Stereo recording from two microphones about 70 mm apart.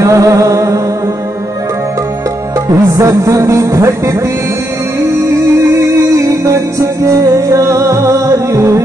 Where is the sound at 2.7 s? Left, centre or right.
Right.